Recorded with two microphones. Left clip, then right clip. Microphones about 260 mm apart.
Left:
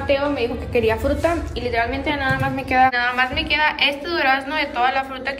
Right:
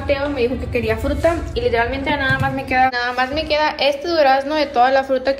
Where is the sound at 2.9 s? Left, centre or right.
Centre.